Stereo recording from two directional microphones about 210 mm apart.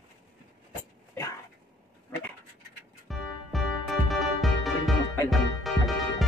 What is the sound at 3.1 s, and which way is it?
Music, centre (ahead or behind).